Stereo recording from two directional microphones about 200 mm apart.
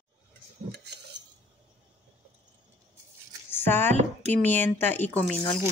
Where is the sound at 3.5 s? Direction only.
10° left (ahead or behind).